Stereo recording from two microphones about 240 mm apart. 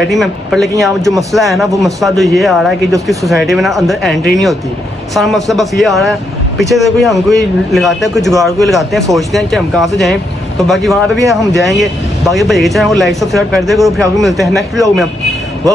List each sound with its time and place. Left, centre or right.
0.1 s a man's voice: centre